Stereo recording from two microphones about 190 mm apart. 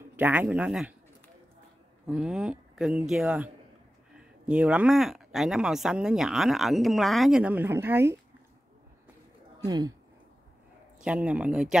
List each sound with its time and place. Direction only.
0.1 s speech: 10° right (ahead or behind)
2.0 s speech: 5° right (ahead or behind)
4.5 s speech: 5° right (ahead or behind)
9.7 s speech: 20° right (ahead or behind)
11.1 s speech: 5° right (ahead or behind)